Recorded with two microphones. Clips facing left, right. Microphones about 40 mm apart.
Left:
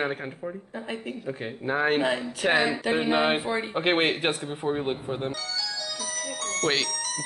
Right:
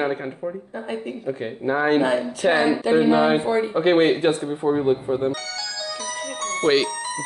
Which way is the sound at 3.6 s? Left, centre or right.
Left.